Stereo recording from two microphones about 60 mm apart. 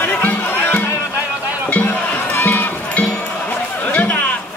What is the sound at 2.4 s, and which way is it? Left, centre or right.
Music, left.